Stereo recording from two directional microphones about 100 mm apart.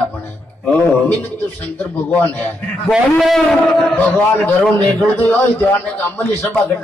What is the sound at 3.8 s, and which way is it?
A man's voice, 15° left (ahead or behind).